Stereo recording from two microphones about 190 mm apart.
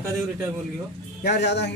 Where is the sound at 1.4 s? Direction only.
65° left (ahead or behind).